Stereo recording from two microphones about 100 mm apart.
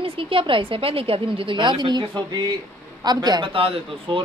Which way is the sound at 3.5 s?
65° right (ahead or behind).